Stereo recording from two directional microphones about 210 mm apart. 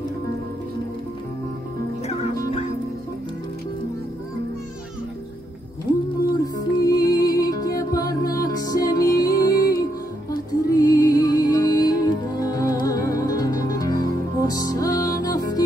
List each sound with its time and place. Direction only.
6.4 s music: 15° left (ahead or behind)